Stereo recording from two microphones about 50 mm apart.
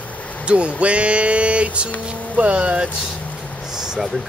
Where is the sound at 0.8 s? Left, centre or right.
Right.